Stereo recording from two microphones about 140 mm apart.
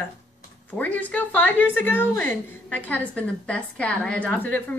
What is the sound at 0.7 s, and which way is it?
A woman's voice, 10° left (ahead or behind).